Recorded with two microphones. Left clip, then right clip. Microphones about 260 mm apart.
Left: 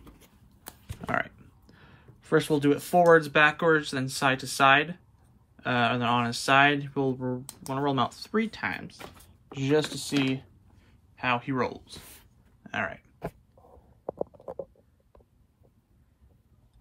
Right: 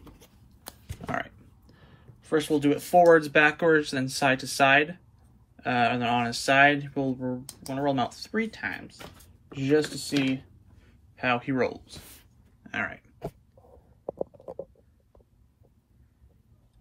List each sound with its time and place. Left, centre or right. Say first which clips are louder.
0.8 s speech: left 3 dB; centre
13.7 s stomach rumble: even; right